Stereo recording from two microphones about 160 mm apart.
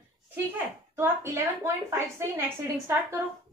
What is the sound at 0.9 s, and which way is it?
A woman's voice, 15° right (ahead or behind).